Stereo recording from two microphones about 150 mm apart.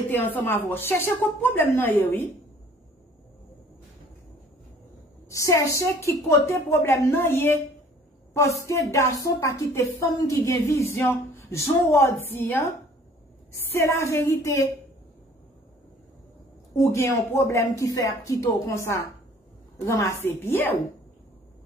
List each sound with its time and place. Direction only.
0.1 s a woman's voice: 10° left (ahead or behind)
5.3 s a woman's voice: 20° left (ahead or behind)
16.7 s a woman's voice: 20° left (ahead or behind)